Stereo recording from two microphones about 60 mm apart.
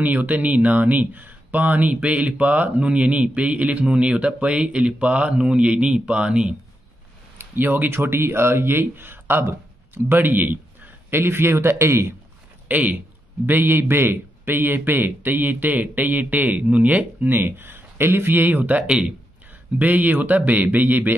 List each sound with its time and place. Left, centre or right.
0.0 s speech: right
7.3 s a man's voice: right
12.6 s a man's voice: right
19.8 s a man's voice: right